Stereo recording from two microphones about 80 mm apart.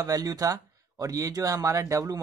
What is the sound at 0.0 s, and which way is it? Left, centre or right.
Speech, right.